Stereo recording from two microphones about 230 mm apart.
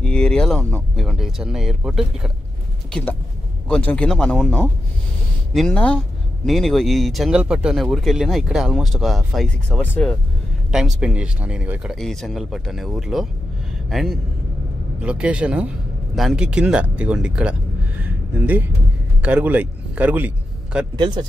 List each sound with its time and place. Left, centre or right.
0.0 s speech: centre
3.6 s speech: centre
18.0 s a sound: centre
19.2 s a man's voice: centre
21.0 s speech: centre